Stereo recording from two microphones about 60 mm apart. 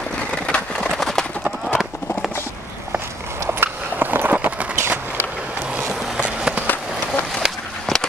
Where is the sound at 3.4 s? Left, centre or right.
Right.